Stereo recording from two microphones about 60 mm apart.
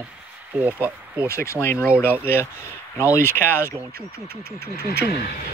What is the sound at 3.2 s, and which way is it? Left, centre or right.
Speech, left.